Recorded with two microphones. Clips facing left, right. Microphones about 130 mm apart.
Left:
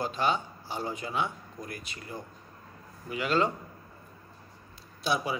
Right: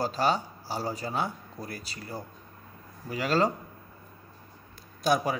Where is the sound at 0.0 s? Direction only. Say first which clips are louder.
Right 2 dB; 40° right (ahead or behind).